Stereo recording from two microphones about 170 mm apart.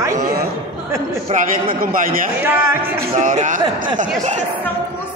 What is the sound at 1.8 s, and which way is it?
Speech, 55° right (ahead or behind).